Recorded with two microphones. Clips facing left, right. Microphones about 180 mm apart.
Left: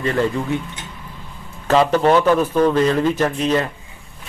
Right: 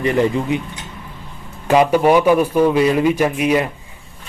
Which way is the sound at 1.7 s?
10° right (ahead or behind).